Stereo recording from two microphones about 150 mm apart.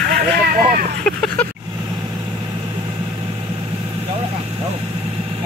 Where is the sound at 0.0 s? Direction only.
90° right.